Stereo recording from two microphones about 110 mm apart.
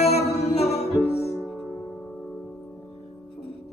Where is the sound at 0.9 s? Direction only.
25° left (ahead or behind).